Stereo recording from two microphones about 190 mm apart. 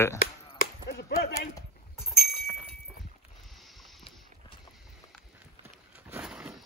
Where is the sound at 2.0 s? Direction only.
Centre (ahead or behind).